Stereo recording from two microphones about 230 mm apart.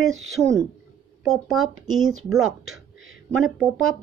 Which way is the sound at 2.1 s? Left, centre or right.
Right.